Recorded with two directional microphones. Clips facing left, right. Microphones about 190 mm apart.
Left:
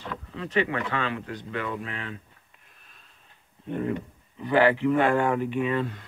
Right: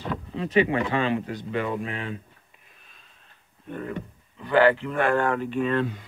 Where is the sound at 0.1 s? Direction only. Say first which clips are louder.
Right 5 dB; 15° right (ahead or behind).